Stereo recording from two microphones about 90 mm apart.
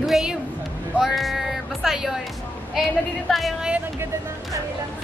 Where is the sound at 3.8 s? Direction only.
30° right (ahead or behind).